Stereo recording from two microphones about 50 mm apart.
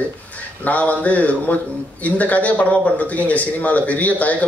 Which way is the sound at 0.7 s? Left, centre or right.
Left.